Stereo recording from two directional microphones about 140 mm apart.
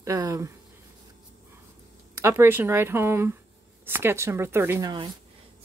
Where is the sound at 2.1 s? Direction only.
20° right (ahead or behind).